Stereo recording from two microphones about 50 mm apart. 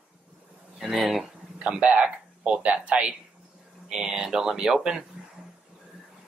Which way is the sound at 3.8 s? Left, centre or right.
Centre.